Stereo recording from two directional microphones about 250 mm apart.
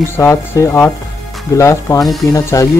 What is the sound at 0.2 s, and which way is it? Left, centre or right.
Speech, centre.